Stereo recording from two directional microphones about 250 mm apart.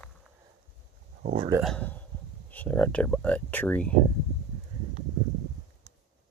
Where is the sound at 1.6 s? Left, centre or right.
Centre.